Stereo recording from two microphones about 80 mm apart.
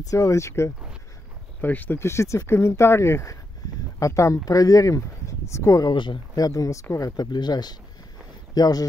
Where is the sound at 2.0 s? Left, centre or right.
Left.